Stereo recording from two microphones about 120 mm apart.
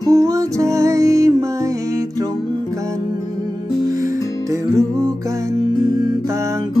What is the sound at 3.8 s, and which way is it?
Music, 25° right (ahead or behind).